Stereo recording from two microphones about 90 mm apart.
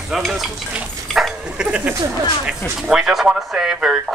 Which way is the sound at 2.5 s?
5° right (ahead or behind).